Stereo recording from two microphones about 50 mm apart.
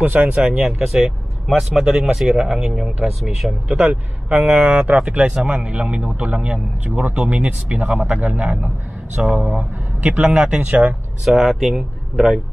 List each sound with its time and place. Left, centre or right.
0.0 s speech: right
0.3 s speech: centre
0.7 s speech: centre
3.6 s speech: centre
11.2 s speech: centre